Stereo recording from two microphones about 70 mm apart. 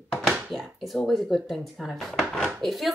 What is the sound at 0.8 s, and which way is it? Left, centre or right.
A woman's voice, centre.